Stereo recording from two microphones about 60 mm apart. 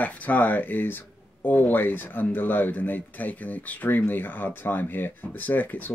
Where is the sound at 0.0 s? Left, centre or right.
Left.